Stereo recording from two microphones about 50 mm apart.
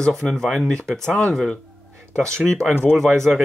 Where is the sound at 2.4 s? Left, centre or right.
Centre.